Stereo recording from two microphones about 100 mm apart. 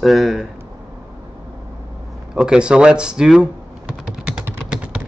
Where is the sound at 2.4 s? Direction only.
10° right (ahead or behind).